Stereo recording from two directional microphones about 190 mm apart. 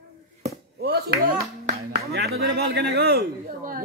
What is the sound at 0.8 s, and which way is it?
Speech, 55° right (ahead or behind).